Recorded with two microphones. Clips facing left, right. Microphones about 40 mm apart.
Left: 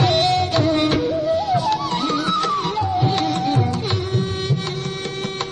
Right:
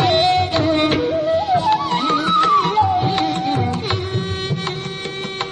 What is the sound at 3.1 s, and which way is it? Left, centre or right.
Music, centre.